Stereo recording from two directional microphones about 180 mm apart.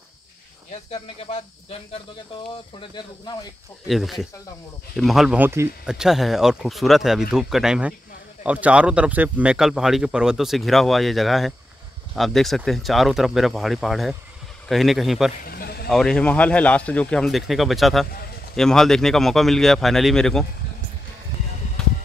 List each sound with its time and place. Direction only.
0.9 s speech: 35° left (ahead or behind)
3.8 s speech: centre (ahead or behind)
15.4 s a sound: 55° left (ahead or behind)
15.9 s speech: centre (ahead or behind)
21.8 s music: 5° left (ahead or behind)